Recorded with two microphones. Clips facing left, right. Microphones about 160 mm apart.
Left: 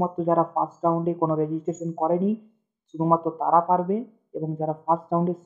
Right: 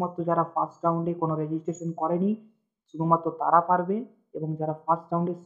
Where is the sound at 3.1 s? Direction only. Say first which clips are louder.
Left 2 dB; 15° left (ahead or behind).